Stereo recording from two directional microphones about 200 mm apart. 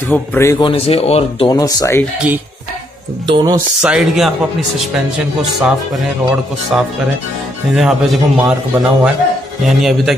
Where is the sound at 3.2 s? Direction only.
20° right (ahead or behind).